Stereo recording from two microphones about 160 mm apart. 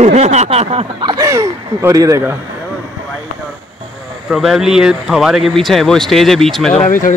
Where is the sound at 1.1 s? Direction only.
20° right (ahead or behind).